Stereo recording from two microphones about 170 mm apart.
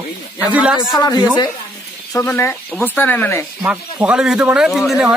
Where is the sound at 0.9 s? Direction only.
25° left (ahead or behind).